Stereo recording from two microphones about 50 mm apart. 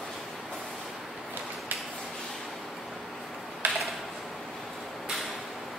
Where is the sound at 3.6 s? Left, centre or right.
Right.